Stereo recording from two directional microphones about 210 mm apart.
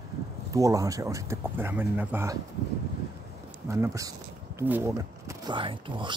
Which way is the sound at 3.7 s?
15° right (ahead or behind).